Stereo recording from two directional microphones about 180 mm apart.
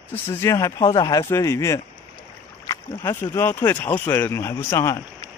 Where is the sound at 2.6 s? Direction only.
15° left (ahead or behind).